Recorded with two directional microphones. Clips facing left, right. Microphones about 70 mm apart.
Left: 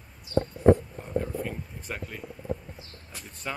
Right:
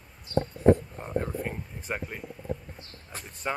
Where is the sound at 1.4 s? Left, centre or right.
Right.